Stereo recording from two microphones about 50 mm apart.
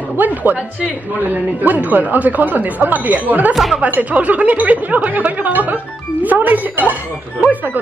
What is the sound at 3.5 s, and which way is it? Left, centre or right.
Speech, centre.